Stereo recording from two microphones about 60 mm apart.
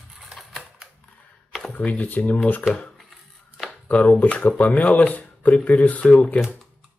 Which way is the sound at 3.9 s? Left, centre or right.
Left.